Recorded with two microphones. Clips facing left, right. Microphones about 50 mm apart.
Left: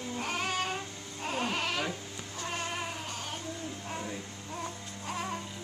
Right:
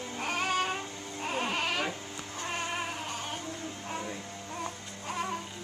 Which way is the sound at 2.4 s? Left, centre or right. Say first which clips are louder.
Right 1 dB; centre.